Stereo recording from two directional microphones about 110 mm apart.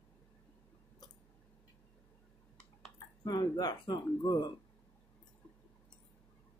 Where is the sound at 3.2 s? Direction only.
40° left (ahead or behind).